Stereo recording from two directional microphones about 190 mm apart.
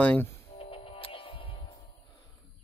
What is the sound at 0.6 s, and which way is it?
Music, 30° left (ahead or behind).